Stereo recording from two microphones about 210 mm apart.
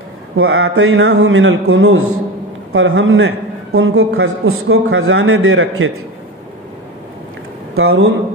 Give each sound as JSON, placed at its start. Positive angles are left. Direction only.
{"t": 0.4, "sound": "a man's voice", "side_deg": -85}
{"t": 2.7, "sound": "a man's voice", "side_deg": -70}
{"t": 7.7, "sound": "speech", "side_deg": -80}